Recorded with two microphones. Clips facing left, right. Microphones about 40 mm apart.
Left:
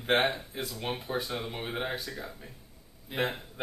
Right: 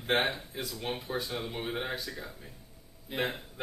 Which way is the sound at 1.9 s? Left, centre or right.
Centre.